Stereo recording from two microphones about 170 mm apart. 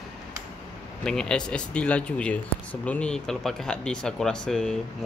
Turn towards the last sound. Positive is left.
turn(degrees=5)  # may be behind; listen again after turning